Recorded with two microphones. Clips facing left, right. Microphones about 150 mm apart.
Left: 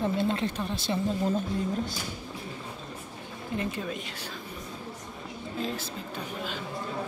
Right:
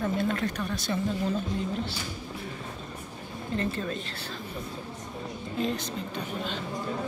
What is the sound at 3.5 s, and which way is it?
Speech, 10° left (ahead or behind).